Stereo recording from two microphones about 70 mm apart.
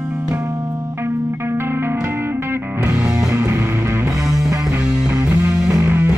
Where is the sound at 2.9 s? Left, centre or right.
Centre.